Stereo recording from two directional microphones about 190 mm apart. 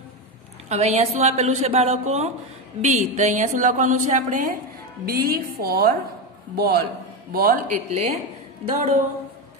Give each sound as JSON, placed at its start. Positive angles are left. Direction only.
{"t": 0.7, "sound": "a woman's voice", "side_deg": -35}